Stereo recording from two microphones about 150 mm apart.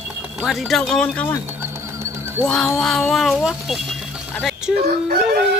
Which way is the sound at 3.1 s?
Centre (ahead or behind).